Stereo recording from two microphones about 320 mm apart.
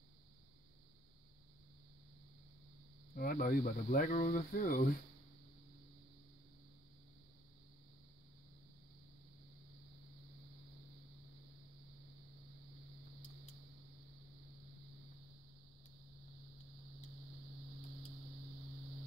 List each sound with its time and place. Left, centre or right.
3.2 s speech: left